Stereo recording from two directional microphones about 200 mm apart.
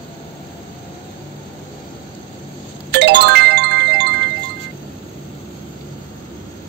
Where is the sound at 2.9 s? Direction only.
60° right (ahead or behind).